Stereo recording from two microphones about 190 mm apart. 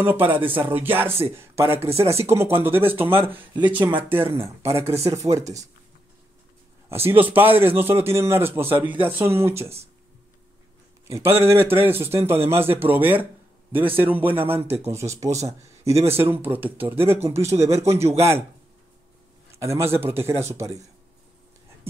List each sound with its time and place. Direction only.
0.0 s speech: 10° right (ahead or behind)
1.8 s speech: 30° right (ahead or behind)
2.2 s speech: 10° right (ahead or behind)
6.9 s speech: 10° right (ahead or behind)
11.1 s speech: 15° right (ahead or behind)
19.5 s speech: 15° right (ahead or behind)